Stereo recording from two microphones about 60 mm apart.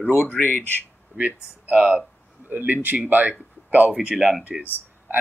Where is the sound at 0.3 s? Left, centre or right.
Left.